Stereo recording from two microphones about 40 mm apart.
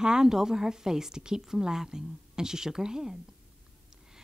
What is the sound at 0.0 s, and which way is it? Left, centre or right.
Speech, centre.